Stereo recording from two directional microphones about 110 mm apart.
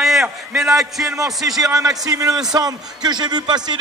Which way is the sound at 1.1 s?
30° right (ahead or behind).